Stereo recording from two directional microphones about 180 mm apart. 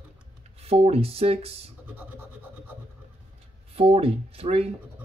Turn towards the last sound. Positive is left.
turn(degrees=-35)  # may be behind; listen again after turning